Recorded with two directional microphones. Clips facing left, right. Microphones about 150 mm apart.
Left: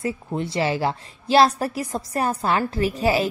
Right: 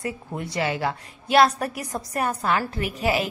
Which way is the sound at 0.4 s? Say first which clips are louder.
Left 3 dB; 30° left (ahead or behind).